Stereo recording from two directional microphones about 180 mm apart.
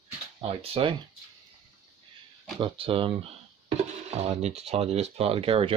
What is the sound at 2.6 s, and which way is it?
Speech, 30° right (ahead or behind).